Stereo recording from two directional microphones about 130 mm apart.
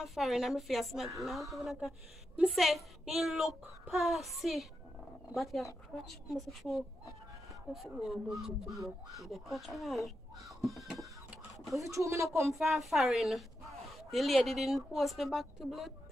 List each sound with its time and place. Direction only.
0.0 s a woman's voice: centre (ahead or behind)
11.8 s speech: 25° right (ahead or behind)
12.5 s a woman's voice: centre (ahead or behind)